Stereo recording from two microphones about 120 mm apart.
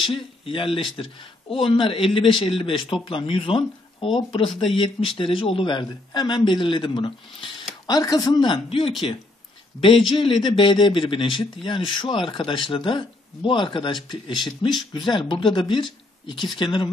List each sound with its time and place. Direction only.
0.0 s a man's voice: 45° left (ahead or behind)
7.8 s a man's voice: 30° left (ahead or behind)